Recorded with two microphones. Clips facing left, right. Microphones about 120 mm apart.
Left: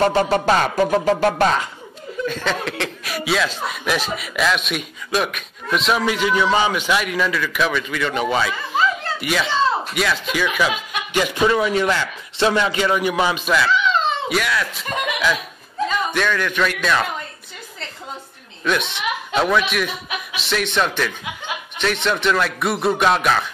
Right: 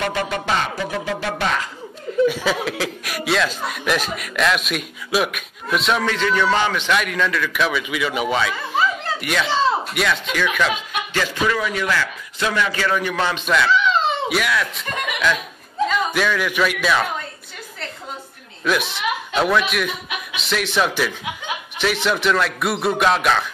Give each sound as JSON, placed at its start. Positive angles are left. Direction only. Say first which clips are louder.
{"t": 0.0, "sound": "music", "louder": "left 7 dB", "side_deg": 35}
{"t": 2.2, "sound": "speech", "louder": "right 1 dB", "side_deg": -10}
{"t": 6.0, "sound": "speech", "louder": "left 1 dB", "side_deg": 10}
{"t": 11.1, "sound": "a man's voice", "louder": "left 4 dB", "side_deg": 20}
{"t": 18.6, "sound": "speech", "louder": "even", "side_deg": -5}